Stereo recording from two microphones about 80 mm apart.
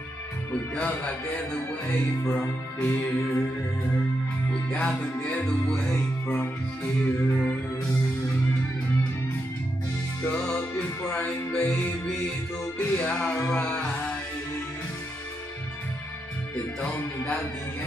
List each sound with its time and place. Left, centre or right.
0.5 s speech: centre
4.6 s music: centre
6.2 s music: left
10.8 s music: centre
13.5 s a sound: centre
16.8 s speech: left